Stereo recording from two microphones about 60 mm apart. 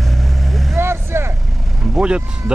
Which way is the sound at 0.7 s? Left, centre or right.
Right.